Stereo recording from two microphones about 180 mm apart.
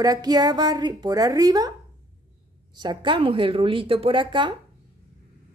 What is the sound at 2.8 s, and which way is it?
Speech, 25° right (ahead or behind).